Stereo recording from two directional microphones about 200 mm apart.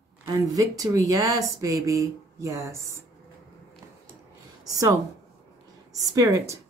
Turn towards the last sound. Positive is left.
turn(degrees=-15)  # may be behind; listen again after turning